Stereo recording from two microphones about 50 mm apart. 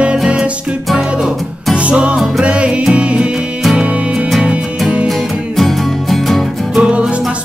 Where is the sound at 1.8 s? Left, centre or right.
Right.